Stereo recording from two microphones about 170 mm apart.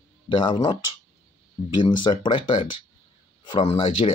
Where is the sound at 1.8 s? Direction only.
25° left (ahead or behind).